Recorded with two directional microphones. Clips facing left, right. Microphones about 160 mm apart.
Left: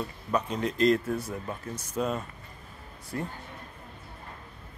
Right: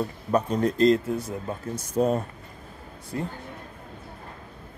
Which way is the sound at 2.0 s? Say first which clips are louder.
Right 7 dB; 40° right (ahead or behind).